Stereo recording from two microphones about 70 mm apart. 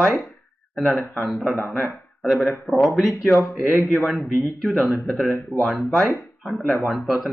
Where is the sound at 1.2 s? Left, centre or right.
Centre.